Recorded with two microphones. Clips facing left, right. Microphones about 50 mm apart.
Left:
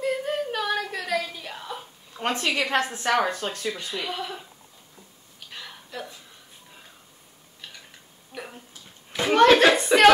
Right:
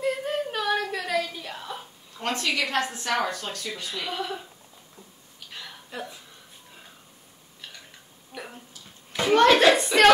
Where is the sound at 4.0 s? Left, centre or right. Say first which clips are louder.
Even; centre.